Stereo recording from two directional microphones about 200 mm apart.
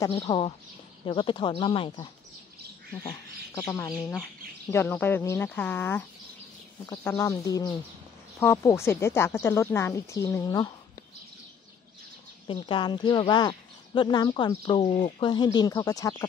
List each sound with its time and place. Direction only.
0.1 s speech: 30° left (ahead or behind); by 3.9 s 15° left (ahead or behind)
3.9 s speech: centre (ahead or behind); by 10.7 s 20° left (ahead or behind)
12.4 s speech: 25° left (ahead or behind)